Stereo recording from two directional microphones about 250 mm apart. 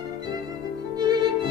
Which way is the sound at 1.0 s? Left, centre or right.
Centre.